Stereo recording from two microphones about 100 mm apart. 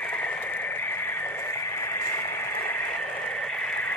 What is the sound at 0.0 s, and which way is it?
Radio, 15° left (ahead or behind).